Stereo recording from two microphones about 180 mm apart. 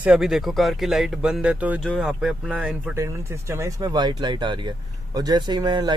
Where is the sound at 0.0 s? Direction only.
5° right (ahead or behind).